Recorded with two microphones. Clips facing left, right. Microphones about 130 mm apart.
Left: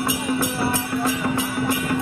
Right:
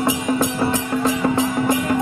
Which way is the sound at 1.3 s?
20° right (ahead or behind).